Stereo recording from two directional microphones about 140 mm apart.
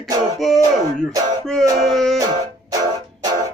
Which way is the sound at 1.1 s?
25° right (ahead or behind).